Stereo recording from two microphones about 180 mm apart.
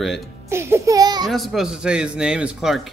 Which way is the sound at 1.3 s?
Centre (ahead or behind).